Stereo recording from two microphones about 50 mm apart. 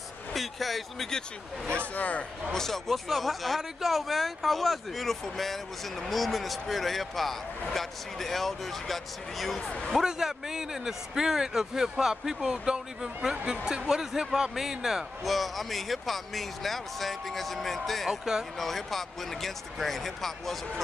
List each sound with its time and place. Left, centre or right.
0.3 s speech: centre
2.0 s speech: left
2.5 s speech: centre
9.6 s speech: left
10.0 s a man's voice: centre
15.2 s speech: centre